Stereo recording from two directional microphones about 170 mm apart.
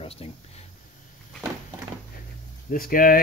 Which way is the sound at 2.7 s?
55° left (ahead or behind).